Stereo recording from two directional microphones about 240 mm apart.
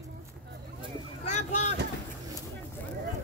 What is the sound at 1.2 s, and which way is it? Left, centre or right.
Vehicle, left.